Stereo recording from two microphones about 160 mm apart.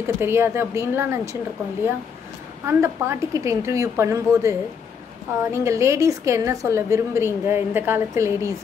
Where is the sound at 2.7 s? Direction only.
15° right (ahead or behind).